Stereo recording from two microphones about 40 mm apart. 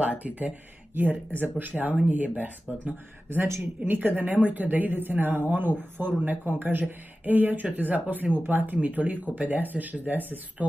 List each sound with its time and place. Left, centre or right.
0.0 s speech: right
0.9 s a woman's voice: right